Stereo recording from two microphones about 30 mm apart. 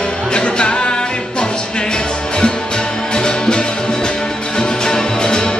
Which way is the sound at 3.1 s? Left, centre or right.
Left.